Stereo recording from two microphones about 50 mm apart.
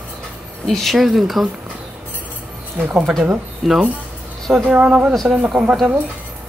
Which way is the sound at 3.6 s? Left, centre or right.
Centre.